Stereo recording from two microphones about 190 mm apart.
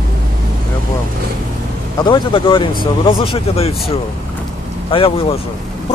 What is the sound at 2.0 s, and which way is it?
Speech, 25° left (ahead or behind).